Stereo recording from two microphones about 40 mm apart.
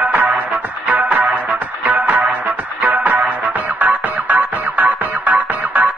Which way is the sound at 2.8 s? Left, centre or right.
Right.